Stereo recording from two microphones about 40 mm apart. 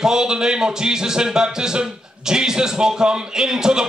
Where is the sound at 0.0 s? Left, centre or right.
Centre.